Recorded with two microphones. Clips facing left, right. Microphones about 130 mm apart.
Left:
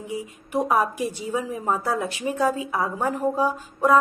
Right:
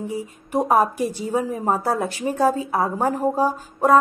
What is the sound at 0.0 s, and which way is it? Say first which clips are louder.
A woman's voice: right 3 dB; 40° right (ahead or behind).